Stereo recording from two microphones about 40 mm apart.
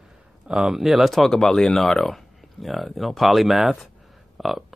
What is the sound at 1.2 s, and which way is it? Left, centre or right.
Speech, centre.